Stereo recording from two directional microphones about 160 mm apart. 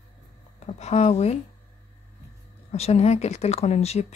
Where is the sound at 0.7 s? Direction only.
40° left (ahead or behind).